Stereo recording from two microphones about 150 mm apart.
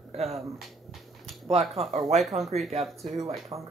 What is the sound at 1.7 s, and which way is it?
Speech, 45° right (ahead or behind).